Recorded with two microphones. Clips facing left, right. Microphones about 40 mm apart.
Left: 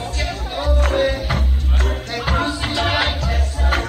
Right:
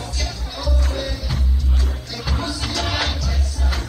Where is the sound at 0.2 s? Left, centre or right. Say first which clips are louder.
Left 5 dB; left.